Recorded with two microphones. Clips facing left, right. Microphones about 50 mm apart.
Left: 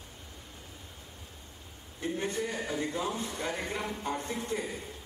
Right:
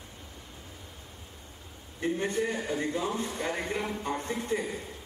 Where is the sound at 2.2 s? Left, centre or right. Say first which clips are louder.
Right 3 dB; right.